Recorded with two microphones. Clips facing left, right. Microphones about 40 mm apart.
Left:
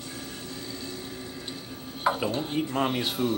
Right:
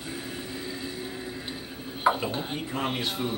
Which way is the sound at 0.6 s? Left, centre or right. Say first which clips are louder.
Right 2 dB; centre.